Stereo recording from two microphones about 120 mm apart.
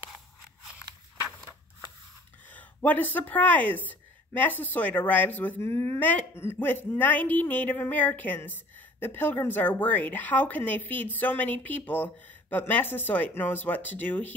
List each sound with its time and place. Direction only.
2.5 s speech: 15° left (ahead or behind)
5.9 s a woman's voice: 15° left (ahead or behind)